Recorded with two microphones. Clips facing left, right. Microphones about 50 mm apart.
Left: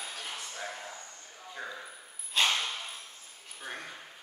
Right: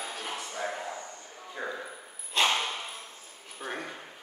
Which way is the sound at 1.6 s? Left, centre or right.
Centre.